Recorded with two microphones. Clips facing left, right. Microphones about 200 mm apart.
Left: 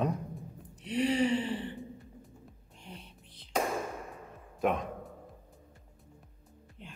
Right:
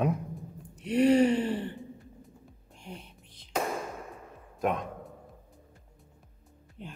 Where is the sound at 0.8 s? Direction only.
45° right (ahead or behind).